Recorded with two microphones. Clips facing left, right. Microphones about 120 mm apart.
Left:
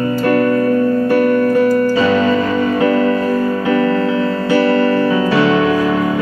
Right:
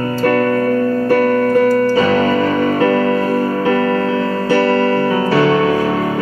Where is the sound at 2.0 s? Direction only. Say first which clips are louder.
Even; 40° right (ahead or behind).